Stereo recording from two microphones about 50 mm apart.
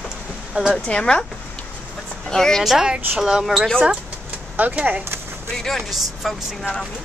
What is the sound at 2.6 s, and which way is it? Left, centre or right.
Speech, centre.